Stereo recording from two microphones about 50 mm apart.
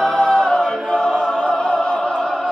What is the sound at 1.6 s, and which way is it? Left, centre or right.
Music, centre.